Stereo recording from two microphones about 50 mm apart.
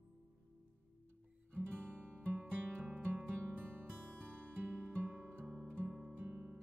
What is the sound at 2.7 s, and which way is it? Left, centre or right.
Music, right.